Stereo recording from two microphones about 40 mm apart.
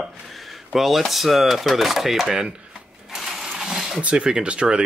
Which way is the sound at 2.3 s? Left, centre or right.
Right.